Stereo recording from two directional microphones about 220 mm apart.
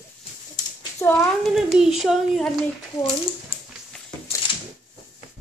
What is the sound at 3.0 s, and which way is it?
Speech, 25° left (ahead or behind).